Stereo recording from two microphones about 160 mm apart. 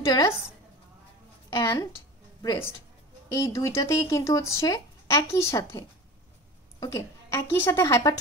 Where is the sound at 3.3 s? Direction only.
20° left (ahead or behind).